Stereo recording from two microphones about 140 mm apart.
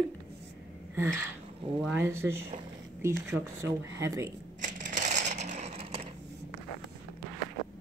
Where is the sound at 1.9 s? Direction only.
15° right (ahead or behind).